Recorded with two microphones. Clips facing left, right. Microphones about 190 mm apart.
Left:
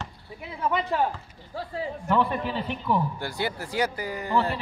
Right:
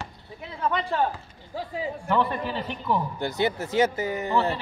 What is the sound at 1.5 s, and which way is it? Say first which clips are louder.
Speech: right 1 dB; 15° right (ahead or behind).